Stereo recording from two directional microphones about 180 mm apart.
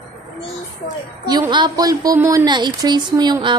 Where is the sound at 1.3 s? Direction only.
25° right (ahead or behind).